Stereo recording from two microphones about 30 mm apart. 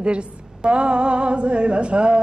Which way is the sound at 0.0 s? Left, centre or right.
Right.